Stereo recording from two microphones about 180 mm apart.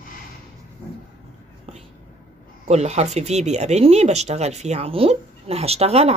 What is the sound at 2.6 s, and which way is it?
Speech, 40° right (ahead or behind).